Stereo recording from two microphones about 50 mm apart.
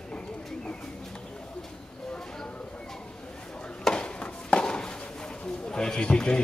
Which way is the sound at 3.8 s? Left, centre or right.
Centre.